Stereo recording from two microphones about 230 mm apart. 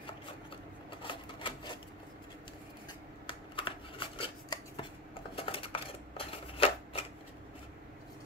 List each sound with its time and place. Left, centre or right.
1.0 s sewing machine: left
3.3 s computer keyboard: left
4.2 s rub: left
5.3 s a sound: left